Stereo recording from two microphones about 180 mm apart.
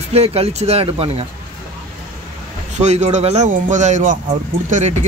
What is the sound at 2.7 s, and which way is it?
Speech, 40° right (ahead or behind).